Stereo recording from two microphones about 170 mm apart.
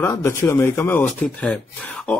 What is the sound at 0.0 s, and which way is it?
Speech, 15° left (ahead or behind).